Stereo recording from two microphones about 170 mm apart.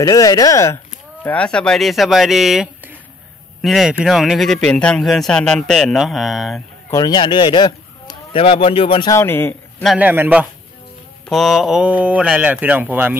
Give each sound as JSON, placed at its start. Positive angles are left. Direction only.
{"t": 0.0, "sound": "speech", "side_deg": 20}
{"t": 1.2, "sound": "speech", "side_deg": 5}
{"t": 6.9, "sound": "a man's voice", "side_deg": 25}
{"t": 9.1, "sound": "a man's voice", "side_deg": 15}
{"t": 9.9, "sound": "speech", "side_deg": -10}
{"t": 11.2, "sound": "speech", "side_deg": 0}